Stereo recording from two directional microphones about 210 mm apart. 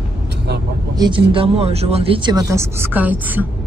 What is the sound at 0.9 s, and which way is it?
A woman's voice, 20° right (ahead or behind).